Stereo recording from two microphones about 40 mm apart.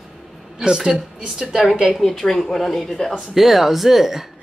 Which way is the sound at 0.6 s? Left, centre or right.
Centre.